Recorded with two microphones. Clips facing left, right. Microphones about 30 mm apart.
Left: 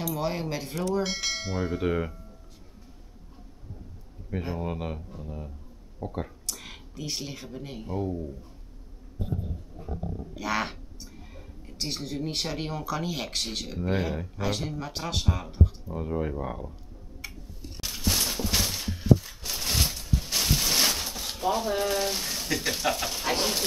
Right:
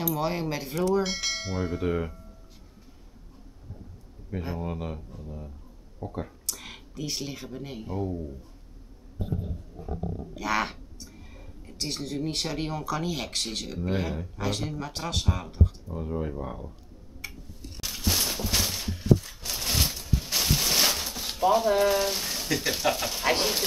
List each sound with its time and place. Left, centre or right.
0.0 s speech: centre
4.3 s speech: centre
6.4 s speech: centre
10.3 s speech: centre
15.9 s speech: centre
17.2 s a sound: centre
23.2 s speech: centre